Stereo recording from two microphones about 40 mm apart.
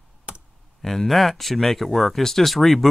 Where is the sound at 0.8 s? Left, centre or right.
Centre.